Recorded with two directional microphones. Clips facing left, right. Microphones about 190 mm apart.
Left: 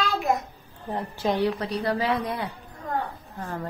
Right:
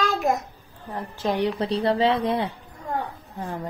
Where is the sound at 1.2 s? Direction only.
5° left (ahead or behind).